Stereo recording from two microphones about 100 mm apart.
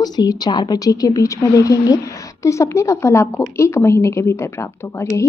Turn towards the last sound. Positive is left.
turn(degrees=30)  # may be behind; listen again after turning